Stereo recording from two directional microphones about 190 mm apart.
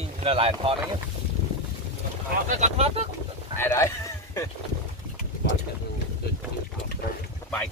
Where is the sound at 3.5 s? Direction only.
15° left (ahead or behind).